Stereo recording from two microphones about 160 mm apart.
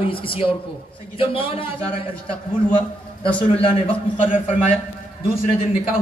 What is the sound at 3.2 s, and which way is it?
Speech, 35° left (ahead or behind).